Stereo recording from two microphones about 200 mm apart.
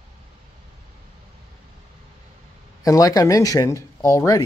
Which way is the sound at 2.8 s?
15° left (ahead or behind).